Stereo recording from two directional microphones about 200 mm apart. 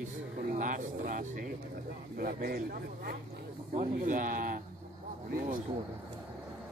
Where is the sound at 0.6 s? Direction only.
40° right (ahead or behind).